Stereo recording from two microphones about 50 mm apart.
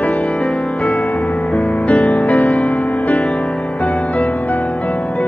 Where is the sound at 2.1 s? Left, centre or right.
Left.